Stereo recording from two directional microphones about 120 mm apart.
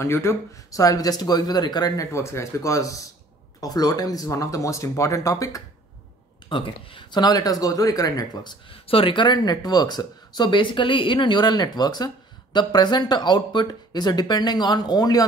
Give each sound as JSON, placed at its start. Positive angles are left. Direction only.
{"t": 0.0, "sound": "speech", "side_deg": 20}
{"t": 6.5, "sound": "speech", "side_deg": 45}
{"t": 8.6, "sound": "speech", "side_deg": 50}